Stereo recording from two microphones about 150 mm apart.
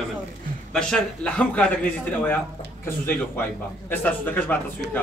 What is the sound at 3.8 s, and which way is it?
Speech, 10° left (ahead or behind).